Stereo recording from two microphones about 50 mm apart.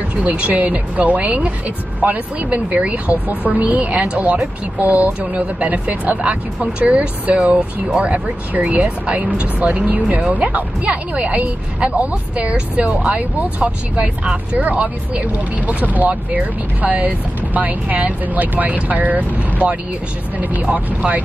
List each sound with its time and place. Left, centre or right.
0.1 s speech: right
20.6 s speech: right